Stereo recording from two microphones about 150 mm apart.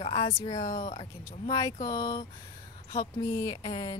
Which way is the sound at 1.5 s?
25° left (ahead or behind).